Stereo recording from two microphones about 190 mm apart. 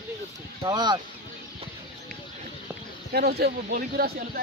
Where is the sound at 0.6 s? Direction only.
20° right (ahead or behind).